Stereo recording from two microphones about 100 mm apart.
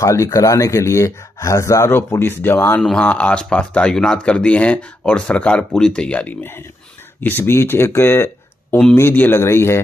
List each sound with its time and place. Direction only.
0.0 s speech: 30° left (ahead or behind)
2.8 s speech: 10° left (ahead or behind); by 9.8 s 25° left (ahead or behind)